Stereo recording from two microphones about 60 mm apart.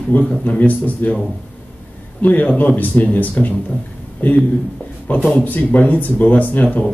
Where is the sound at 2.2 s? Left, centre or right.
Left.